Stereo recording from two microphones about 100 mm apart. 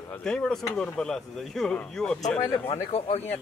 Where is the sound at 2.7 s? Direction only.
85° left.